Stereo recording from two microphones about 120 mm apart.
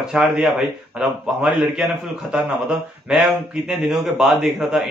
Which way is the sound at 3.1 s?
5° right (ahead or behind).